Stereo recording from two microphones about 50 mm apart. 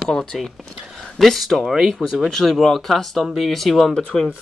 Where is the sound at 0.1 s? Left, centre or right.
Centre.